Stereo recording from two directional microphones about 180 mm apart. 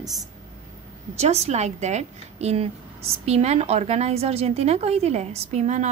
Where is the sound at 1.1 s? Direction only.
35° right (ahead or behind).